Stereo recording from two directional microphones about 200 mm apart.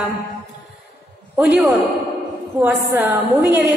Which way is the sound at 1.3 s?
5° right (ahead or behind).